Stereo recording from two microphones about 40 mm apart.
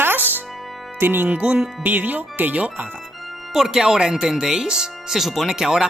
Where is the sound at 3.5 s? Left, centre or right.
Centre.